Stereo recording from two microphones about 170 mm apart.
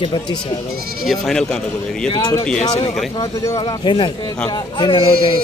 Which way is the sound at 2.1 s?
25° left (ahead or behind).